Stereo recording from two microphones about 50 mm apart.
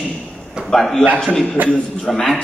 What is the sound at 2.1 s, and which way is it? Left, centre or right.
Speech, centre.